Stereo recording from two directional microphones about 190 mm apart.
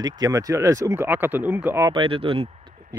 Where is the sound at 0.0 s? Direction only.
20° right (ahead or behind).